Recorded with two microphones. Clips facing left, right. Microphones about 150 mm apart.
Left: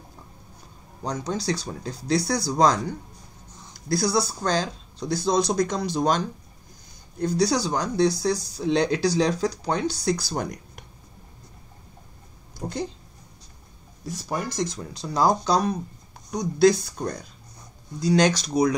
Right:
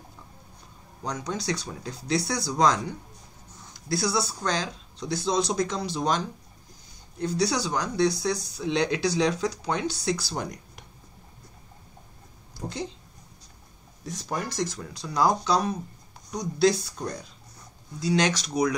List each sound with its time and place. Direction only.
1.0 s speech: 30° left (ahead or behind)
3.9 s speech: 40° left (ahead or behind)
7.2 s speech: 40° left (ahead or behind)
14.0 s speech: 5° left (ahead or behind)
14.9 s speech: 30° left (ahead or behind)